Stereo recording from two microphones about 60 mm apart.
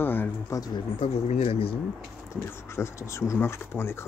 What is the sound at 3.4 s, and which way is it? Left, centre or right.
Speech, left.